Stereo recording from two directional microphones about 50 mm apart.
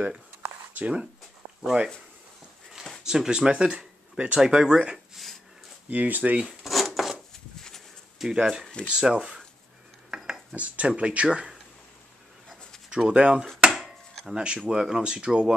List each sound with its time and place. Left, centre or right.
0.7 s speech: right
3.0 s speech: centre
4.9 s a sound: centre
5.9 s speech: right
6.4 s a sound: centre
8.2 s speech: centre
10.1 s dishes: centre
10.5 s speech: right
12.9 s speech: centre
13.7 s chopping: centre
14.2 s speech: centre